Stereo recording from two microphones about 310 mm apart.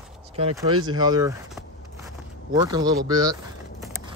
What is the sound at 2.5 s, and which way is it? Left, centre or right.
Speech, centre.